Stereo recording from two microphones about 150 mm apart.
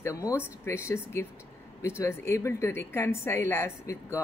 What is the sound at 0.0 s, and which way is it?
A woman's voice, 20° left (ahead or behind).